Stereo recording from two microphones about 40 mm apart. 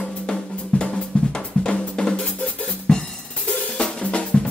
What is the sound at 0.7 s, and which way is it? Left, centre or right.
Drum, left.